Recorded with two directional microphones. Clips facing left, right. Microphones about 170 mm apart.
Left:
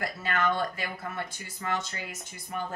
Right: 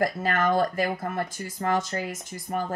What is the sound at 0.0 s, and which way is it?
Speech, 45° right (ahead or behind).